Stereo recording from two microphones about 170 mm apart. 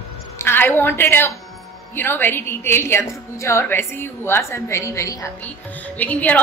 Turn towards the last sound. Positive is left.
turn(degrees=10)  # may be behind; listen again after turning